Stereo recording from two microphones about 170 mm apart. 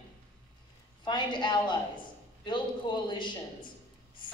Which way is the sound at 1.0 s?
25° left (ahead or behind).